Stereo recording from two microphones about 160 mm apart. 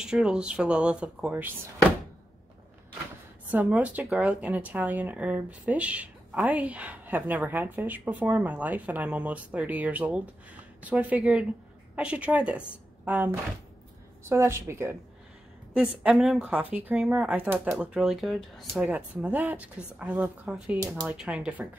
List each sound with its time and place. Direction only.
0.0 s speech: 5° right (ahead or behind)
3.5 s a woman's voice: 10° right (ahead or behind)
15.7 s speech: 5° right (ahead or behind)